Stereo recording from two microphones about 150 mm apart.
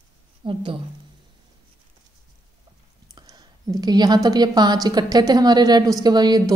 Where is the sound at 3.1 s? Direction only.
25° right (ahead or behind).